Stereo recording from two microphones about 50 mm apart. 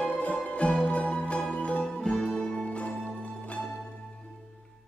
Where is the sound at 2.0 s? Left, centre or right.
Centre.